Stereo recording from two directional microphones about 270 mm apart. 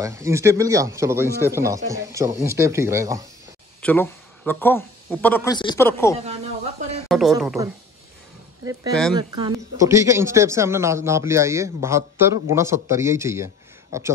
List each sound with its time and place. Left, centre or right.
0.0 s speech: centre
3.8 s speech: centre
6.2 s speech: right
7.1 s a woman's voice: centre
9.1 s speech: centre